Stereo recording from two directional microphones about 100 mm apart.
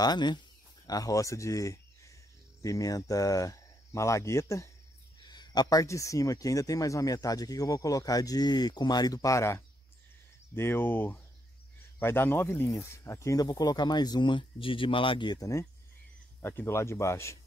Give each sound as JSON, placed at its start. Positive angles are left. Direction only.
{"t": 0.0, "sound": "speech", "side_deg": 45}
{"t": 5.2, "sound": "speech", "side_deg": 45}
{"t": 15.3, "sound": "speech", "side_deg": 35}
{"t": 16.3, "sound": "speech", "side_deg": 25}